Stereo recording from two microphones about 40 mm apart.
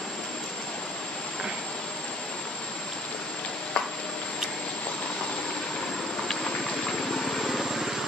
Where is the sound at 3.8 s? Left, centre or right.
Left.